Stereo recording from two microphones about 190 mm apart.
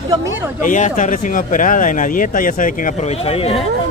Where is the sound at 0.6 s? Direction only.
40° left (ahead or behind).